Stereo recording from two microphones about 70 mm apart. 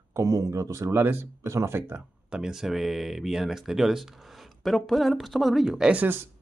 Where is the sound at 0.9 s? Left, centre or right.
Right.